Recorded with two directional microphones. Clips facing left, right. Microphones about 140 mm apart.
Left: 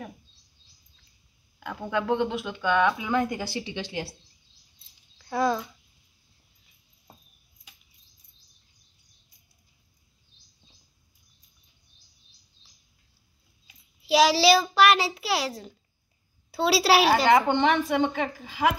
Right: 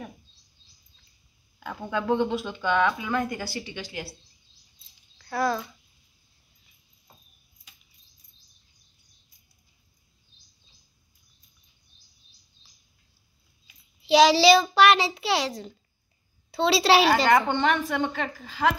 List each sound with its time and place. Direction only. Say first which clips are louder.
1.6 s a child's voice: left 1 dB; centre (ahead or behind)
3.0 s a woman's voice: left 2 dB; 20° left (ahead or behind)
5.2 s speech: left 1 dB; 15° left (ahead or behind)
14.0 s a child's voice: right 3 dB; 5° left (ahead or behind)
17.5 s a woman's voice: left 2 dB; 20° left (ahead or behind)